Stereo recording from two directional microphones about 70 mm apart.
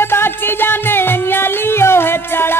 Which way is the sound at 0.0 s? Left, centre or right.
Left.